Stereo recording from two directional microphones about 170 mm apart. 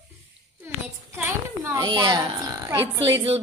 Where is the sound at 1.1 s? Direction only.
20° right (ahead or behind).